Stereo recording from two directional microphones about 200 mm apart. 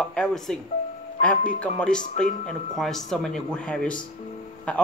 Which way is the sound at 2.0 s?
40° left (ahead or behind).